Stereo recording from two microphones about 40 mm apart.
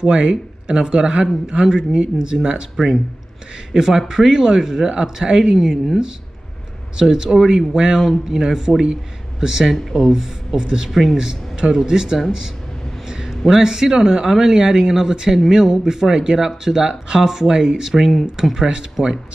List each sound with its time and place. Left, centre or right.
0.0 s speech: right
2.7 s speech: centre
3.7 s speech: centre
8.0 s speech: centre
8.4 s speech: centre
9.7 s speech: centre
10.0 s speech: centre
10.9 s speech: centre
11.1 s speech: centre
13.0 s a sound: centre
13.5 s speech: centre